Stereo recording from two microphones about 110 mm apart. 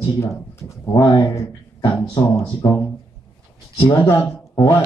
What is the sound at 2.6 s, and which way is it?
Speech, 20° left (ahead or behind).